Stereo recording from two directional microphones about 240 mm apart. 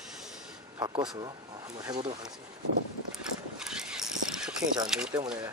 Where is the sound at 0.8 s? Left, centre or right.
Centre.